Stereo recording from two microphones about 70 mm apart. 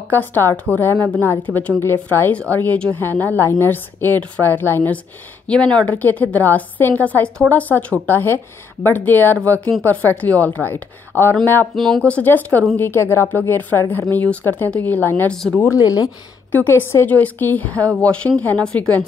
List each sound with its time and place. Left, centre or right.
0.1 s a woman's voice: left
5.5 s a woman's voice: centre; by 11.3 s left
11.7 s speech: centre
12.1 s a woman's voice: left
15.3 s speech: centre
15.7 s speech: left
16.5 s a woman's voice: left